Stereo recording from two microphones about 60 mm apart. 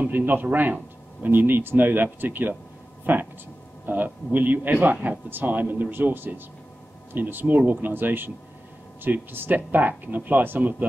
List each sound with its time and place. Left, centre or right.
0.0 s speech: right